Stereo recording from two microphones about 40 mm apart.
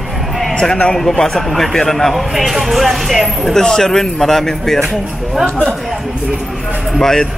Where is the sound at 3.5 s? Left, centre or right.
Centre.